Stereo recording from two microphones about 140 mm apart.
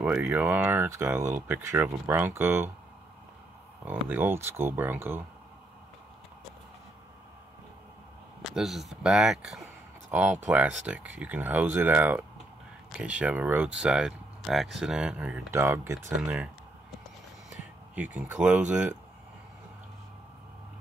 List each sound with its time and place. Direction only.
0.0 s speech: 10° right (ahead or behind)
3.8 s speech: 15° right (ahead or behind)
8.4 s speech: centre (ahead or behind); by 16.0 s 20° right (ahead or behind)
16.2 s speech: 5° right (ahead or behind)
17.9 s speech: 10° right (ahead or behind)